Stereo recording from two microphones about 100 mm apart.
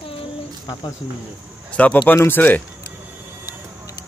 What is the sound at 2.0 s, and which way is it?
Speech, 20° left (ahead or behind).